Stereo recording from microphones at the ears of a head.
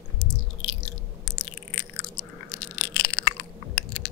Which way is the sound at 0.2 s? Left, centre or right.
Left.